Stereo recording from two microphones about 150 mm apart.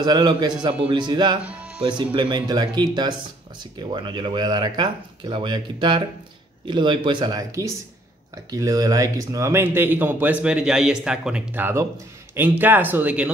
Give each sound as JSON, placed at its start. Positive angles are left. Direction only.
{"t": 0.0, "sound": "speech", "side_deg": -30}
{"t": 1.4, "sound": "speech", "side_deg": -10}
{"t": 1.8, "sound": "speech", "side_deg": -30}